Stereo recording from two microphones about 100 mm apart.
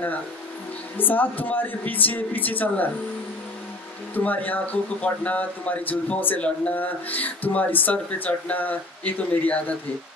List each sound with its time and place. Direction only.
0.9 s speech: 20° left (ahead or behind)
4.1 s speech: 15° left (ahead or behind)